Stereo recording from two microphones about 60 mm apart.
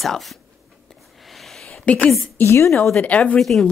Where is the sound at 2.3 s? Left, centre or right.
Left.